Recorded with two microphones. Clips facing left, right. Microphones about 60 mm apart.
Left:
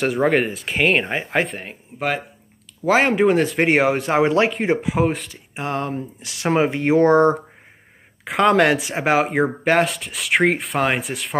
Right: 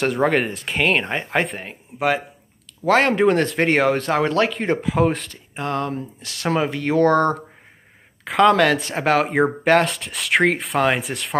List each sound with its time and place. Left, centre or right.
0.0 s speech: centre
5.6 s speech: centre